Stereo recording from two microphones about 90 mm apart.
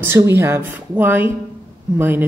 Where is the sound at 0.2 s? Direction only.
30° right (ahead or behind).